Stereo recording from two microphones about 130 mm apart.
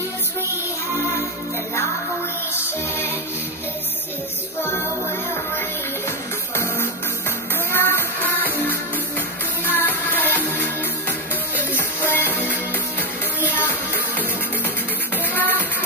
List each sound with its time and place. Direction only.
6.0 s music: 15° left (ahead or behind)
15.3 s music: 15° left (ahead or behind)